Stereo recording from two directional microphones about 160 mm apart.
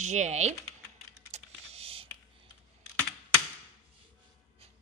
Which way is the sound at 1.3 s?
40° right (ahead or behind).